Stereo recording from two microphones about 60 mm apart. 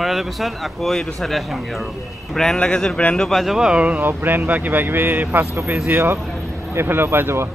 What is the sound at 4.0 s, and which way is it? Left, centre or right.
Speech, right.